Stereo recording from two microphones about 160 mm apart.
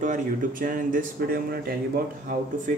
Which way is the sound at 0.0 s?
55° right (ahead or behind).